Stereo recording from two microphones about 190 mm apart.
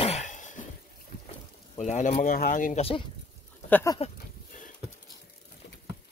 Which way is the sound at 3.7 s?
10° left (ahead or behind).